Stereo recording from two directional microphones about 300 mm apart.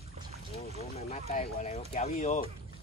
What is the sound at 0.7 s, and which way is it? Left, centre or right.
Speech, left.